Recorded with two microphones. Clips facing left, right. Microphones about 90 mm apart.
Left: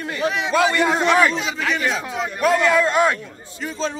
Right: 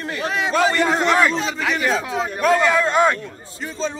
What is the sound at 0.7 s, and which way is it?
A man's voice, 5° left (ahead or behind).